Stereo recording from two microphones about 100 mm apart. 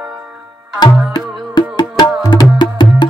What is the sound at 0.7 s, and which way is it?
Music, 45° left (ahead or behind).